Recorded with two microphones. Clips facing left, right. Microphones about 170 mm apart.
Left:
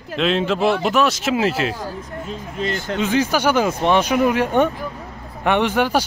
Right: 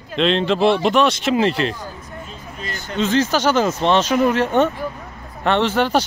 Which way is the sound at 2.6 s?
90° left.